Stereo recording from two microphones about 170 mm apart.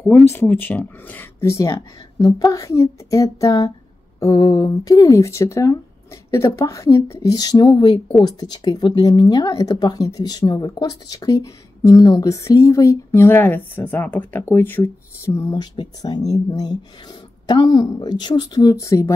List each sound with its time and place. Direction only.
0.3 s speech: 10° left (ahead or behind)